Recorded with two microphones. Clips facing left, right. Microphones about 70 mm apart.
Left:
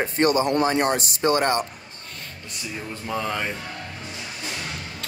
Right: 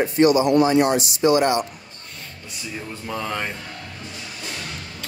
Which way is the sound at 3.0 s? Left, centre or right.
Centre.